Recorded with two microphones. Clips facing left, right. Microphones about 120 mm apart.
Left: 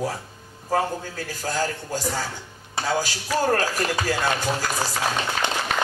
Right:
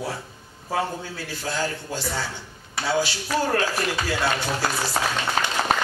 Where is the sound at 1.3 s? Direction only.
45° left (ahead or behind).